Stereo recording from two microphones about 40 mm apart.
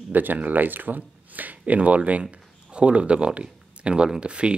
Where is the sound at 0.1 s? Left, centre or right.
Right.